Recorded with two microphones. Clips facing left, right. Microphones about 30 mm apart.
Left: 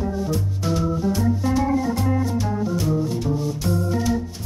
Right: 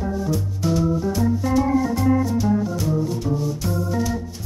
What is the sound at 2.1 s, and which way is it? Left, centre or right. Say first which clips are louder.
Organ: right 4 dB; centre.